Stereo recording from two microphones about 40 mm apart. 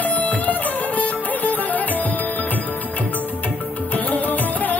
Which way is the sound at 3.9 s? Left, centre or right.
Left.